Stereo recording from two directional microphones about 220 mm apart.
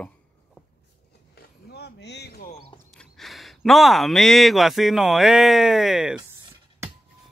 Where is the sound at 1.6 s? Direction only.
45° left (ahead or behind).